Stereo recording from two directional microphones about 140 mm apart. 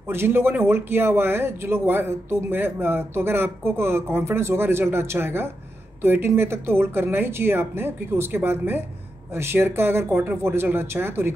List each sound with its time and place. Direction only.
0.1 s speech: 15° right (ahead or behind)